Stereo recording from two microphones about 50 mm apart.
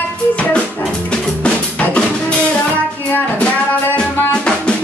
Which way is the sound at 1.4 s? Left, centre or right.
Left.